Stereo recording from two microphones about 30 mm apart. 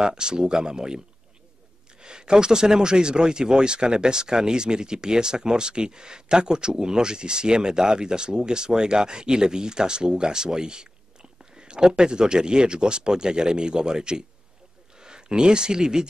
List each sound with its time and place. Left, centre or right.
0.0 s speech: right